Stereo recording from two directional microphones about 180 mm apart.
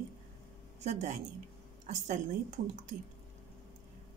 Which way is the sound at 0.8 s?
40° right (ahead or behind).